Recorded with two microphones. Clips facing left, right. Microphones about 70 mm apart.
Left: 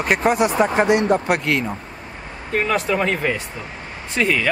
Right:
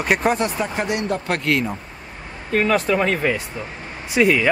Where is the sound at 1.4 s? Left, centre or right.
Centre.